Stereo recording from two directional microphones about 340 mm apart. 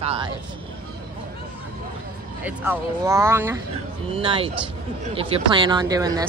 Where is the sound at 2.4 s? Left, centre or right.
Centre.